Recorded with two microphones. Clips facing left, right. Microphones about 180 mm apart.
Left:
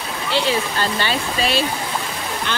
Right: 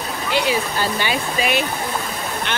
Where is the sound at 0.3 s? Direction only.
15° right (ahead or behind).